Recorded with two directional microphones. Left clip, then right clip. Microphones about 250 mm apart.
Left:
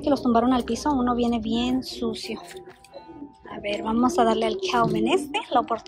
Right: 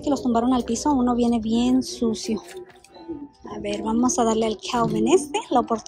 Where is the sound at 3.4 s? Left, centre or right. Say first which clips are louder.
Even; centre.